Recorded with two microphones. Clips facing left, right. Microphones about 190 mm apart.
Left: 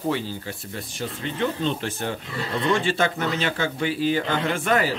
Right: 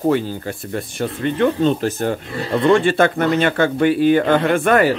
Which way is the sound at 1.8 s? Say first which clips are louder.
Right 8 dB; 45° right (ahead or behind).